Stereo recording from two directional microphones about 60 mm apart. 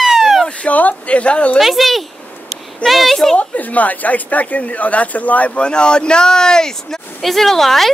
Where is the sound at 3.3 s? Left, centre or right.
Left.